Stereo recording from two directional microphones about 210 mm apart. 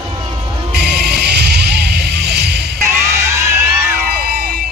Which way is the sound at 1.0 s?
50° right (ahead or behind).